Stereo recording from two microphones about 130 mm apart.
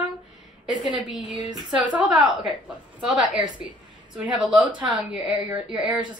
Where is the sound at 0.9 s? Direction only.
40° right (ahead or behind).